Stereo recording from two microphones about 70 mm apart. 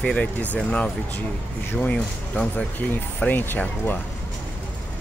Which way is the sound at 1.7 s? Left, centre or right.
Centre.